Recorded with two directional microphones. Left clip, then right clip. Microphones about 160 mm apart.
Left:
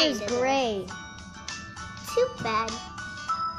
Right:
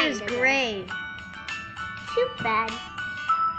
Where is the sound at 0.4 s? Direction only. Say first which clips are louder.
Right 3 dB; 10° left (ahead or behind).